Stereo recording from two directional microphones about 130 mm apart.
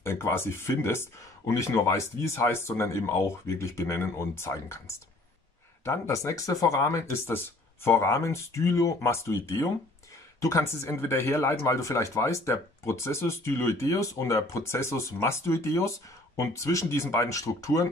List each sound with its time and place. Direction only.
0.0 s speech: 20° left (ahead or behind)